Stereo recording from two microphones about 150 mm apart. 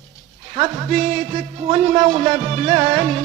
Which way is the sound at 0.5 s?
35° right (ahead or behind).